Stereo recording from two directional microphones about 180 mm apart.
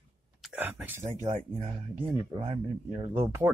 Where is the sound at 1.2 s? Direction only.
35° right (ahead or behind).